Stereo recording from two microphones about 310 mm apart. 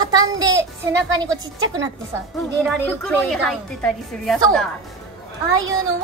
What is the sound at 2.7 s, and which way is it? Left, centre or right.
A woman's voice, centre.